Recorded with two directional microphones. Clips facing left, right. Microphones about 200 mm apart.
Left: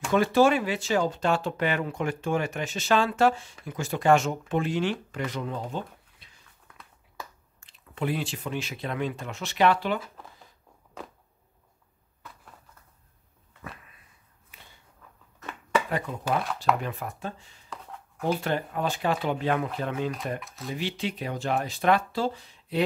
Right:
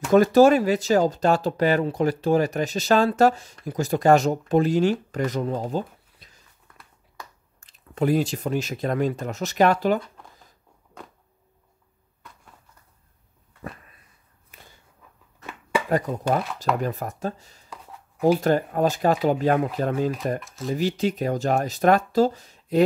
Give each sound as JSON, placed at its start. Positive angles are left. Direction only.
{"t": 0.1, "sound": "speech", "side_deg": -40}
{"t": 5.1, "sound": "a sound", "side_deg": -40}
{"t": 7.6, "sound": "speech", "side_deg": -40}
{"t": 9.9, "sound": "speech", "side_deg": 5}
{"t": 14.5, "sound": "walk", "side_deg": -45}
{"t": 16.8, "sound": "speech", "side_deg": -40}
{"t": 20.4, "sound": "speech", "side_deg": 0}
{"t": 20.7, "sound": "speech", "side_deg": -40}